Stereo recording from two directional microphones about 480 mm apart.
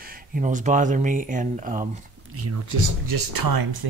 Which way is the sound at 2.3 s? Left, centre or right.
Right.